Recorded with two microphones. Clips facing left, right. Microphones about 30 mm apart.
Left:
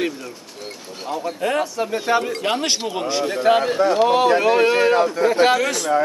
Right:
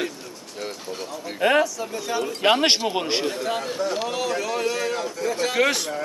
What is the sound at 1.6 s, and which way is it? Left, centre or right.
A man's voice, left.